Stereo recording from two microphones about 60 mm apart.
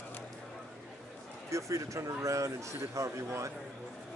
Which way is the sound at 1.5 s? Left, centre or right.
Right.